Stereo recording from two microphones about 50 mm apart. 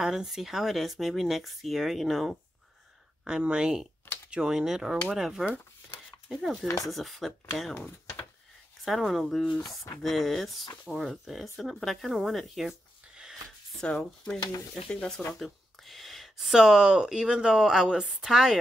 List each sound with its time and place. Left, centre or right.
0.0 s speech: centre
3.3 s speech: centre
8.8 s speech: centre
12.6 s a sound: centre
13.8 s speech: left
15.3 s speech: centre